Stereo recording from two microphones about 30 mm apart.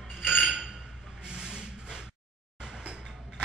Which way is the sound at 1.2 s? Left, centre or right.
Right.